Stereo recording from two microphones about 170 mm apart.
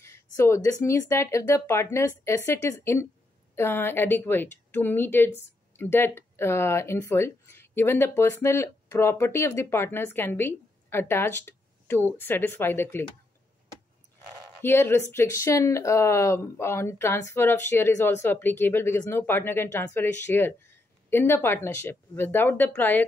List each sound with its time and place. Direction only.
0.0 s speech: 15° left (ahead or behind)
14.6 s speech: 15° left (ahead or behind)